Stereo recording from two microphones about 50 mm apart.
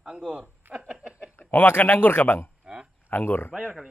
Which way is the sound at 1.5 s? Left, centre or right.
Left.